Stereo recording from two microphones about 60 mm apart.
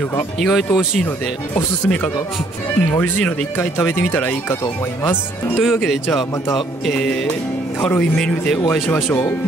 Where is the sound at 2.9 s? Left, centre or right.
Left.